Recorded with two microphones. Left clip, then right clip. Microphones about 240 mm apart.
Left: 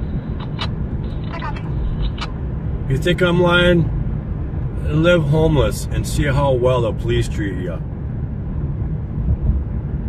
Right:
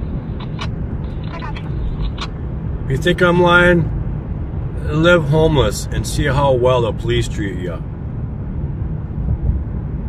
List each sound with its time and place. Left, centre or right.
3.0 s speech: centre
4.9 s speech: centre